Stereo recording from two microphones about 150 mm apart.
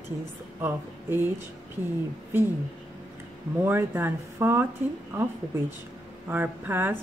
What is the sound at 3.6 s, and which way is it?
Speech, 15° right (ahead or behind).